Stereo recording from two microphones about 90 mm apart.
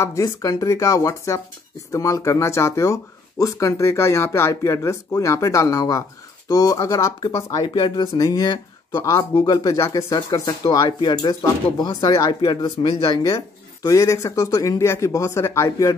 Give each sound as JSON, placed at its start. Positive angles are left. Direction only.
{"t": 0.0, "sound": "speech", "side_deg": 40}
{"t": 7.6, "sound": "speech", "side_deg": 65}
{"t": 8.0, "sound": "speech", "side_deg": 45}
{"t": 9.5, "sound": "speech", "side_deg": 50}
{"t": 9.8, "sound": "speech", "side_deg": 35}
{"t": 12.1, "sound": "speech", "side_deg": 40}
{"t": 12.8, "sound": "speech", "side_deg": 80}
{"t": 13.1, "sound": "speech", "side_deg": 40}